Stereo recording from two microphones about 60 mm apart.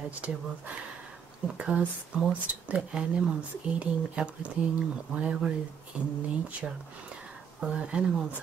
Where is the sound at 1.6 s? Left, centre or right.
Centre.